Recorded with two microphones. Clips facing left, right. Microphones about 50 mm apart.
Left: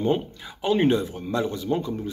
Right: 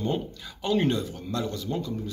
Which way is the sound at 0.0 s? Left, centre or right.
Left.